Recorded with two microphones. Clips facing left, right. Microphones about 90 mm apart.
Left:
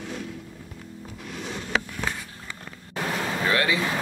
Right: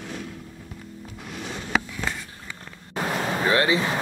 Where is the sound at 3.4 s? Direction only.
30° right (ahead or behind).